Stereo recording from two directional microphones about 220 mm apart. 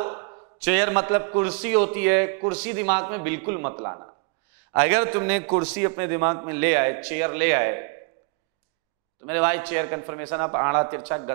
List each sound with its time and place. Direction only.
0.0 s a sound: 20° right (ahead or behind)
0.6 s a man's voice: 15° right (ahead or behind)
9.2 s a man's voice: 15° right (ahead or behind)